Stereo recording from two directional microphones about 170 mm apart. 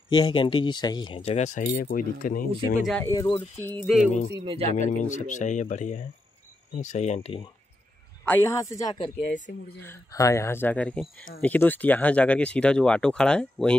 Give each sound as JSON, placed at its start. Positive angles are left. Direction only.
{"t": 0.1, "sound": "speech", "side_deg": 30}
{"t": 1.6, "sound": "speech", "side_deg": 60}
{"t": 2.8, "sound": "speech", "side_deg": 5}
{"t": 3.1, "sound": "speech", "side_deg": 20}
{"t": 4.5, "sound": "speech", "side_deg": -35}
{"t": 4.7, "sound": "speech", "side_deg": 45}
{"t": 8.3, "sound": "speech", "side_deg": 15}